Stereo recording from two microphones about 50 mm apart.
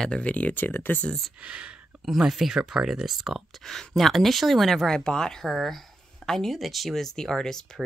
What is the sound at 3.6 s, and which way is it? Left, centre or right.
Speech, centre.